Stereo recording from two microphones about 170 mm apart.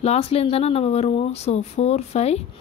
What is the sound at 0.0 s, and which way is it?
A woman's voice, 35° left (ahead or behind).